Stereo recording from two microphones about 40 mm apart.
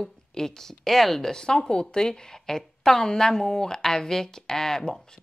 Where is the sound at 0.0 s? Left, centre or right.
Centre.